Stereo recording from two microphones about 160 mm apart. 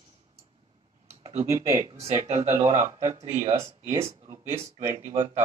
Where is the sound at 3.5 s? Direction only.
15° right (ahead or behind).